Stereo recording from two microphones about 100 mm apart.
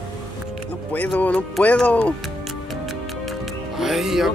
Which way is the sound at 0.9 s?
15° left (ahead or behind).